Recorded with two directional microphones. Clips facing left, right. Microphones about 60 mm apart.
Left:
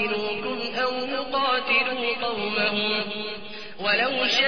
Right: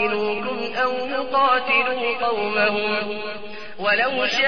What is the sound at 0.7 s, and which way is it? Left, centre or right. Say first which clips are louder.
A man's voice: right 4 dB; right.